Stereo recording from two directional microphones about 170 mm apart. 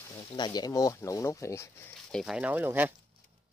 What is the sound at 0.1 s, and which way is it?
Speech, 25° left (ahead or behind).